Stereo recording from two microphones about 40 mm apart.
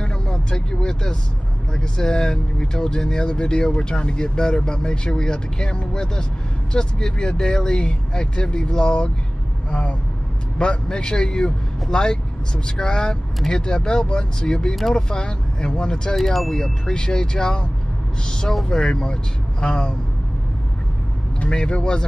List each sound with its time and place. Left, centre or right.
0.0 s vehicle: centre
1.7 s speech: centre
16.2 s speech: centre; by 19.9 s left
21.5 s speech: left